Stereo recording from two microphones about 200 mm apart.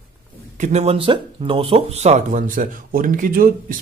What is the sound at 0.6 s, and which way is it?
Speech, 35° right (ahead or behind).